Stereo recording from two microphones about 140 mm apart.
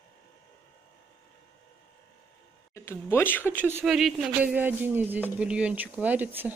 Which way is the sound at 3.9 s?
Centre (ahead or behind).